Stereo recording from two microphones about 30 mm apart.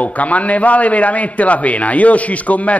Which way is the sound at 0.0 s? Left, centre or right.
Left.